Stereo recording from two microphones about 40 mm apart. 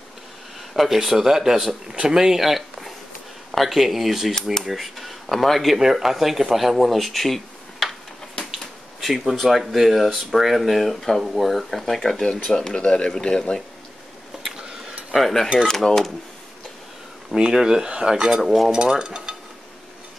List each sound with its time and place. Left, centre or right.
0.7 s speech: centre
5.8 s speech: centre
8.4 s finger snapping: left
9.0 s speech: centre
12.7 s speech: left
14.6 s a sound: centre
15.0 s cutlery: centre
15.6 s speech: centre
17.4 s speech: centre
17.8 s stir: right
18.1 s speech: centre
18.4 s speech: centre
18.7 s stir: right